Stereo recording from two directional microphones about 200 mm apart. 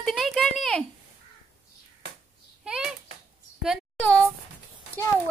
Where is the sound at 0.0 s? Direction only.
Centre (ahead or behind).